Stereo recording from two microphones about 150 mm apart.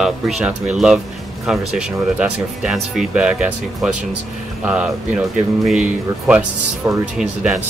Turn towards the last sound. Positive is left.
turn(degrees=-5)  # may be behind; listen again after turning